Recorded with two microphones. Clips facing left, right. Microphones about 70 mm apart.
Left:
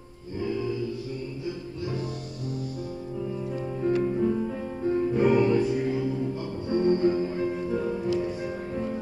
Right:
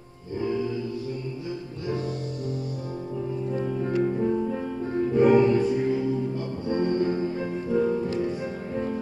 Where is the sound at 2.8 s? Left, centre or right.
Right.